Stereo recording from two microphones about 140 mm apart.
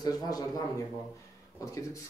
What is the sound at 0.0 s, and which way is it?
Speech, 25° left (ahead or behind).